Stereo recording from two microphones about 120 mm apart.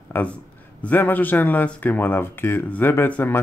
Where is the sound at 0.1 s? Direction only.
20° left (ahead or behind).